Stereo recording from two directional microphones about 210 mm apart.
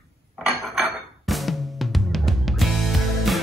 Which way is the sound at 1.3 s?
Centre (ahead or behind).